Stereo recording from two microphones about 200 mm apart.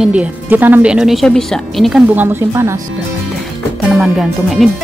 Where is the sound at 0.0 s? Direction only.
5° right (ahead or behind).